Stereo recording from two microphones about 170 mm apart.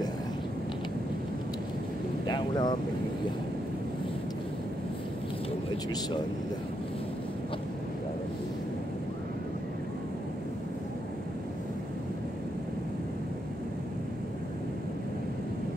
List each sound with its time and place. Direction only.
2.2 s vehicle: 25° left (ahead or behind)